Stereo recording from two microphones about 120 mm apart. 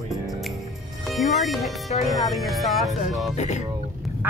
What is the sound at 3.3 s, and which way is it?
Speech, 75° left (ahead or behind).